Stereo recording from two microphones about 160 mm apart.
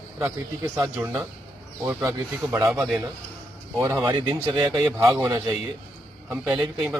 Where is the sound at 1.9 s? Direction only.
20° right (ahead or behind).